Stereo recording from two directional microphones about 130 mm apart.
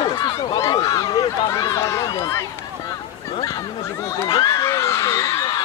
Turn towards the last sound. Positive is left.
turn(degrees=25)  # may be behind; listen again after turning